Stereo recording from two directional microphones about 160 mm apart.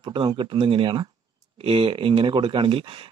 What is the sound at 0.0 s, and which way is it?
Speech, 30° right (ahead or behind).